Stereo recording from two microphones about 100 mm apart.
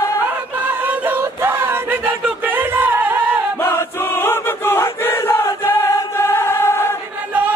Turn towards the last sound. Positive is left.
turn(degrees=25)  # may be behind; listen again after turning